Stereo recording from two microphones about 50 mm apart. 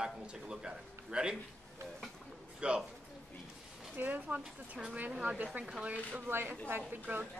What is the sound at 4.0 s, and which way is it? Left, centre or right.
Speech, right.